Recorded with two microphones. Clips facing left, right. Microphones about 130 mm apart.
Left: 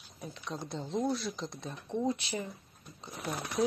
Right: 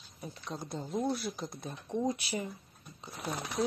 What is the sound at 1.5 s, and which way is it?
Speech, 10° right (ahead or behind).